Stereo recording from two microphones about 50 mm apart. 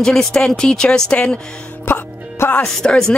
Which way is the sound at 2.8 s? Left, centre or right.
Centre.